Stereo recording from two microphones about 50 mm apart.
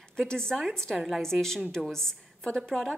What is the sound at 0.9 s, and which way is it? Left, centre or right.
Speech, centre.